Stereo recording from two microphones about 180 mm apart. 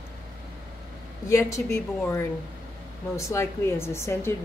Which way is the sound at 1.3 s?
15° left (ahead or behind).